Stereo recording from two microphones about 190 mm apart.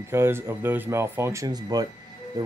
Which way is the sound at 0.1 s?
10° right (ahead or behind).